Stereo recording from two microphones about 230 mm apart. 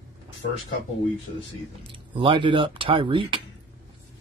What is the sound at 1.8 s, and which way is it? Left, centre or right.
Speech, right.